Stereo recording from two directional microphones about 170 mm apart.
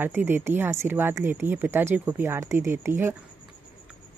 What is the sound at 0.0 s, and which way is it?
Speech, 10° right (ahead or behind).